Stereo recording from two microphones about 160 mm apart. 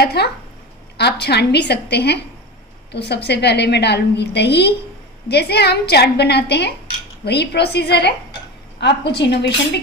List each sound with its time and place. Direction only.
0.0 s a woman's voice: 90° left